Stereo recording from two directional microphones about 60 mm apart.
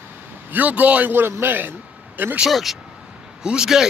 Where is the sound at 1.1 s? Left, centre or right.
Right.